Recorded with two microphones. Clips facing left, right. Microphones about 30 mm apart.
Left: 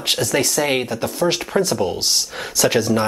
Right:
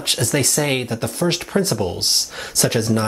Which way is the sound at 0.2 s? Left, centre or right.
Right.